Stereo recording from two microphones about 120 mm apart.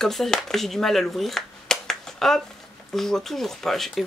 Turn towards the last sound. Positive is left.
turn(degrees=0)  # may be behind; listen again after turning